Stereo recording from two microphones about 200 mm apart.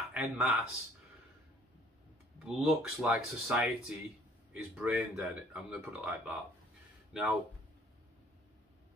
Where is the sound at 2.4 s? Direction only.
Centre (ahead or behind).